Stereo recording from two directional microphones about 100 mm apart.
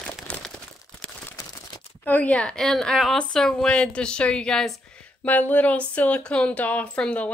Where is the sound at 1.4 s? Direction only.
40° left (ahead or behind).